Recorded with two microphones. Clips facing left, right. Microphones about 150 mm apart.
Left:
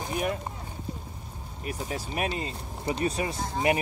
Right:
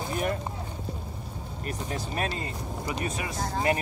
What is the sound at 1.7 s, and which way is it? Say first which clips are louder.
Speech: even; 10° left (ahead or behind).